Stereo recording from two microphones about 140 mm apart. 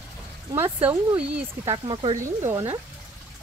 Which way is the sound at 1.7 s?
35° right (ahead or behind).